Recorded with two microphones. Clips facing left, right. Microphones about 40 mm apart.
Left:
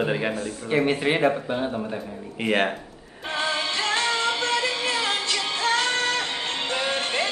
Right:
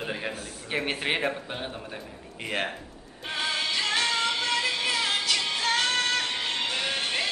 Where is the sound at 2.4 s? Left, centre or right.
Left.